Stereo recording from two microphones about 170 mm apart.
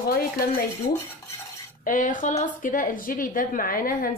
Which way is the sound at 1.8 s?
50° left (ahead or behind).